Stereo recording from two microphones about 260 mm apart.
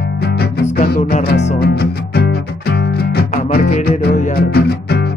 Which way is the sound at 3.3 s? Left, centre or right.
Left.